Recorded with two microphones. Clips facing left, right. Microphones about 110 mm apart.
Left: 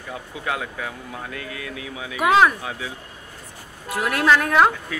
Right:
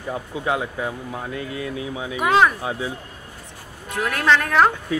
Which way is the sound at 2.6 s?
30° right (ahead or behind).